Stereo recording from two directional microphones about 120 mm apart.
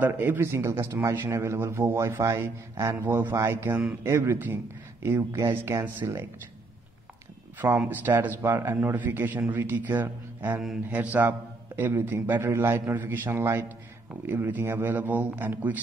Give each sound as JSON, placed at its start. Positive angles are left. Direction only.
{"t": 0.0, "sound": "speech", "side_deg": -15}
{"t": 7.5, "sound": "a man's voice", "side_deg": -20}